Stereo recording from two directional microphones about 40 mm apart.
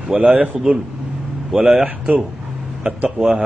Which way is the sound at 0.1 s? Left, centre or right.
Right.